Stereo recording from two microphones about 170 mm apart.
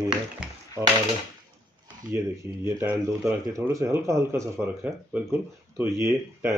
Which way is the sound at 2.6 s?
10° right (ahead or behind).